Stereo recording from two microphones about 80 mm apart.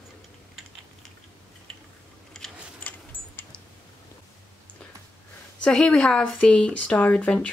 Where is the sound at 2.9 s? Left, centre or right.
Centre.